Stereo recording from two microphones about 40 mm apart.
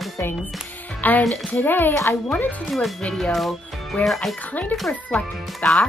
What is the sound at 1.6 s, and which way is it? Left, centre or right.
Speech, left.